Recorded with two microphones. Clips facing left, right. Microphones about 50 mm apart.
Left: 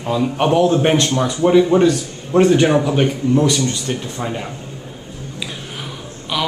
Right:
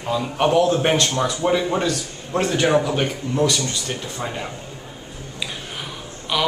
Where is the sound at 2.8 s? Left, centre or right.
Centre.